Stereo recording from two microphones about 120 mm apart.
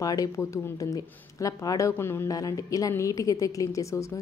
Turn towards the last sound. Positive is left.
turn(degrees=25)  # may be behind; listen again after turning